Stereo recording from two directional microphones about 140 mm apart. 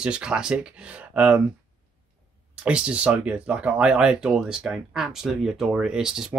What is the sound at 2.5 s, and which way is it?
Speech, 5° right (ahead or behind).